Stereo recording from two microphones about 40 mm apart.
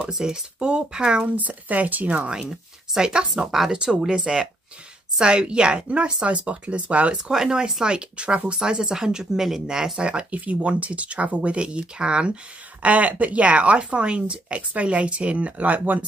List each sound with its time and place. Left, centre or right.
0.0 s speech: right
1.2 s a woman's voice: right
3.0 s speech: right
7.2 s speech: centre
9.9 s a woman's voice: right
12.8 s a woman's voice: right